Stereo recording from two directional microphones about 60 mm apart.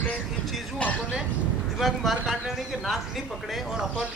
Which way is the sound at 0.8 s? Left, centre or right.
Centre.